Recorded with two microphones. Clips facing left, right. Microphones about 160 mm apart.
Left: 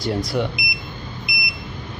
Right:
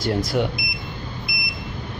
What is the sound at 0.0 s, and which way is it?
Speech, centre (ahead or behind).